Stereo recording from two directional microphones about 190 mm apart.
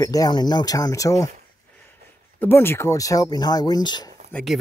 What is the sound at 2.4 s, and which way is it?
Speech, 10° left (ahead or behind).